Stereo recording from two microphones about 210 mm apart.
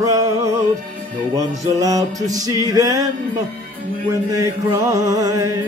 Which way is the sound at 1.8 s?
15° right (ahead or behind).